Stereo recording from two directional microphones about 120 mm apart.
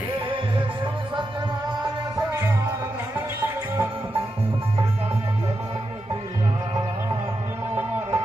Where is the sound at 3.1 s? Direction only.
15° right (ahead or behind).